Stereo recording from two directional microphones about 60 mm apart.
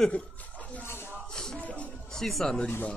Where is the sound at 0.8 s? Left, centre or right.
Left.